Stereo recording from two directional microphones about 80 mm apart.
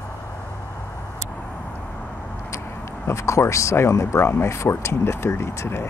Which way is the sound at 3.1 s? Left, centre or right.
Left.